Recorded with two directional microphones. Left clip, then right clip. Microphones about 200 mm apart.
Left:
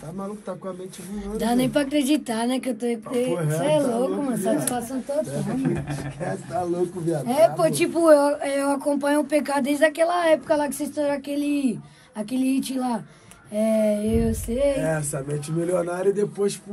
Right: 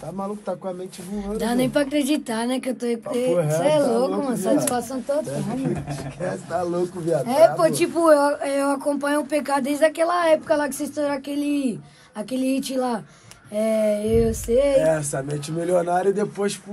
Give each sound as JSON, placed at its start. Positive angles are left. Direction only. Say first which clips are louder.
{"t": 1.1, "sound": "speech", "louder": "even", "side_deg": 0}
{"t": 14.8, "sound": "speech", "louder": "right 6 dB", "side_deg": -45}